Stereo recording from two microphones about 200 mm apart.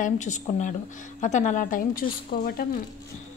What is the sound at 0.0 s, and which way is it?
A woman's voice, 40° left (ahead or behind).